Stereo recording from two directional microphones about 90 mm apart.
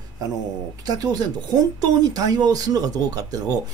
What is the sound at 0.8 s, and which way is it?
Speech, 45° right (ahead or behind).